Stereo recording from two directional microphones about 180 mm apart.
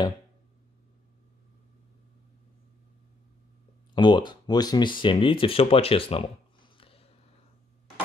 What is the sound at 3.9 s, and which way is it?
Speech, 25° left (ahead or behind).